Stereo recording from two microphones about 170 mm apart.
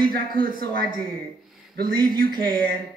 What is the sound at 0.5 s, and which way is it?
Speech, 55° right (ahead or behind).